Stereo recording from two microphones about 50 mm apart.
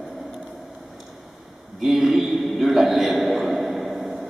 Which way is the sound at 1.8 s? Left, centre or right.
Centre.